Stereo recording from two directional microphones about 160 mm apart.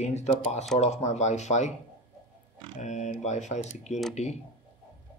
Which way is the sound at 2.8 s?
50° left (ahead or behind).